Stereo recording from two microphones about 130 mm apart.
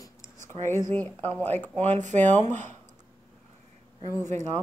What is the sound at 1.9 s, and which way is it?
Speech, 70° right (ahead or behind).